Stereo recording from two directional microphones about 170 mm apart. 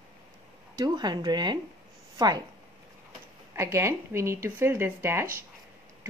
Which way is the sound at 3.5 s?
15° right (ahead or behind).